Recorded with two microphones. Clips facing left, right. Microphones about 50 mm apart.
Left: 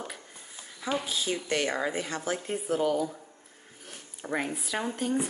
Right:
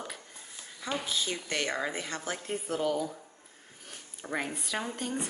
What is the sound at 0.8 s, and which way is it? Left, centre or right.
A woman's voice, centre.